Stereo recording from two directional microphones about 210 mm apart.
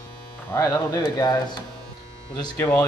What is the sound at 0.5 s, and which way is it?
Speech, 15° left (ahead or behind).